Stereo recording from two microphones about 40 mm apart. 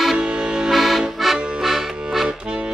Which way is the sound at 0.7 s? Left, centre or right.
Centre.